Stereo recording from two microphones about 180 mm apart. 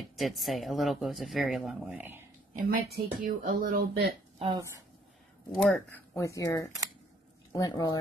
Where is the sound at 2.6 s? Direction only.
55° right (ahead or behind).